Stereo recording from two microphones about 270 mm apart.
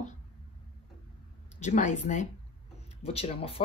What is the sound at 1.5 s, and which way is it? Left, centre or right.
Speech, left.